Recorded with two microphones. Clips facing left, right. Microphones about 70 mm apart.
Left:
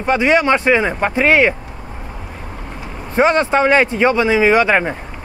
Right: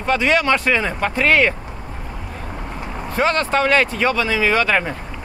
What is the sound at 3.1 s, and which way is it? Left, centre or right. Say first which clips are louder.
Speech: left 5 dB; centre.